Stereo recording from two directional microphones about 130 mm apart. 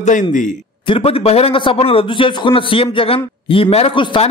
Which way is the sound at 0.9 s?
50° left (ahead or behind).